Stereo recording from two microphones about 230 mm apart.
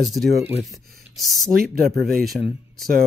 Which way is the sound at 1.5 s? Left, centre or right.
Right.